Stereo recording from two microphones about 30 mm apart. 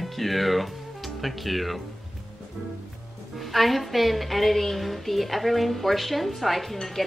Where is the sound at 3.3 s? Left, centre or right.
Centre.